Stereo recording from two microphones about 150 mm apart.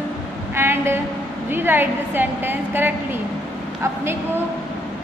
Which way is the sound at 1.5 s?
15° right (ahead or behind).